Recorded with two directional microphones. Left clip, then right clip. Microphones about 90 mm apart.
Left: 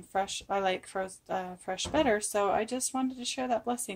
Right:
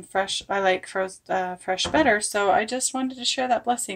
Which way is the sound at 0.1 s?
30° left (ahead or behind).